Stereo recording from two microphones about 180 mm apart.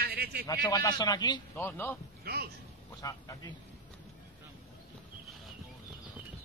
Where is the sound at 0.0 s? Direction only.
60° right (ahead or behind).